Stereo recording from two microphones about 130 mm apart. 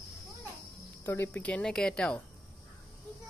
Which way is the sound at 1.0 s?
20° left (ahead or behind).